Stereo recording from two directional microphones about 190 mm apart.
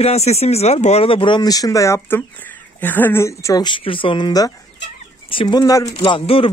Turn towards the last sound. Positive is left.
turn(degrees=30)  # may be behind; listen again after turning